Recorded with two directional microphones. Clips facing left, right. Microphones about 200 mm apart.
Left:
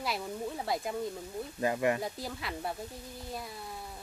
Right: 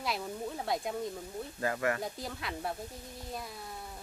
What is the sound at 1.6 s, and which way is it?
Speech, 20° left (ahead or behind).